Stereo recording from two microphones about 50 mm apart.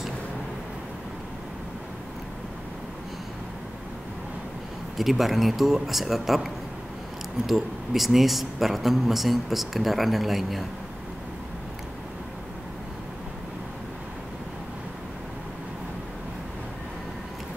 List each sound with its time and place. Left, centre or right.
4.9 s speech: centre